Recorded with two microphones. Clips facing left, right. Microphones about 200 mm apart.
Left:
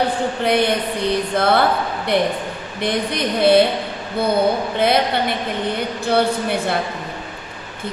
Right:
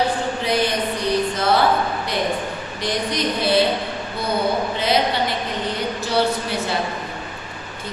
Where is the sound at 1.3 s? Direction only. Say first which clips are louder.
Left 3 dB; 60° left (ahead or behind).